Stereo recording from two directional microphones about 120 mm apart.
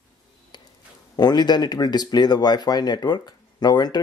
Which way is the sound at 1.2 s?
35° left (ahead or behind).